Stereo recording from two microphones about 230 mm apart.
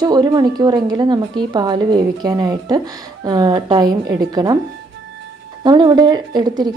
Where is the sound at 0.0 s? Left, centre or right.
Centre.